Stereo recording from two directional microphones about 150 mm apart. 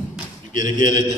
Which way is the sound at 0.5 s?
60° left (ahead or behind).